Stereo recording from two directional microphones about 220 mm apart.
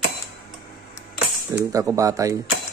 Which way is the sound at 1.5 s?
15° right (ahead or behind).